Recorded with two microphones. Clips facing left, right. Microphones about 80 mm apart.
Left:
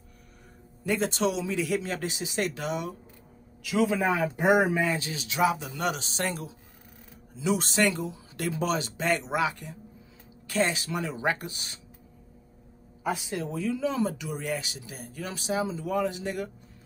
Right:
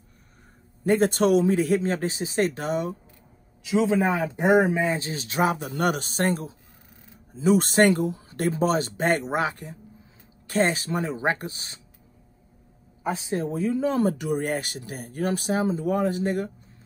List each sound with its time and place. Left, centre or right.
0.8 s speech: right
3.6 s a man's voice: right
13.0 s speech: right